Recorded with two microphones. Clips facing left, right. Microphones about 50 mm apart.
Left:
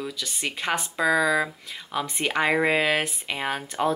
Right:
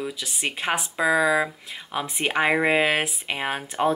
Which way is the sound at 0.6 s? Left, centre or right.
Centre.